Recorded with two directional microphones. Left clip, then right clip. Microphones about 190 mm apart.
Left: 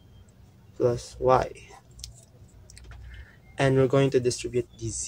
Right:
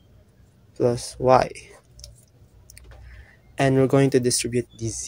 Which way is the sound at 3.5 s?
15° right (ahead or behind).